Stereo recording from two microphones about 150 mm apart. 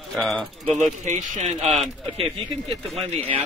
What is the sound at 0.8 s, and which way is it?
Speech, 50° right (ahead or behind).